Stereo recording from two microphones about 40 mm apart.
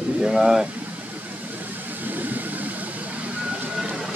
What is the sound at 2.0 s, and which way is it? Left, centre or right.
Vehicle, right.